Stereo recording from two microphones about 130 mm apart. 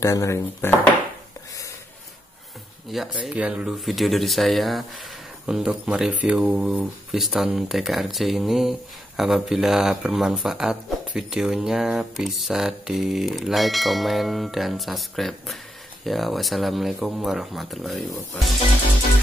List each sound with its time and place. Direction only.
0.0 s speech: 25° left (ahead or behind)
2.9 s speech: centre (ahead or behind)